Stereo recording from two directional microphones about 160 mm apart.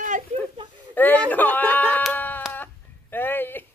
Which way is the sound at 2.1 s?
10° left (ahead or behind).